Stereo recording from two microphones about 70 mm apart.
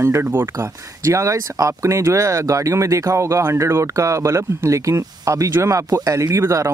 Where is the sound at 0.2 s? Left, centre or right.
Right.